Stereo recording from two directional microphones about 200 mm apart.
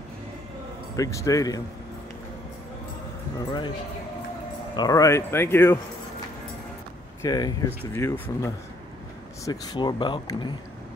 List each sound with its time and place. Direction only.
0.9 s speech: 15° left (ahead or behind)
3.3 s speech: 20° left (ahead or behind)
4.7 s speech: 15° left (ahead or behind)
7.2 s speech: 20° left (ahead or behind)